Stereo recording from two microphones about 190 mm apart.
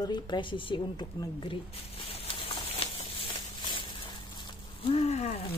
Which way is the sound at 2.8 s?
30° left (ahead or behind).